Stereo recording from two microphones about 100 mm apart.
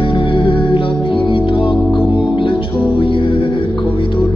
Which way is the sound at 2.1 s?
60° left (ahead or behind).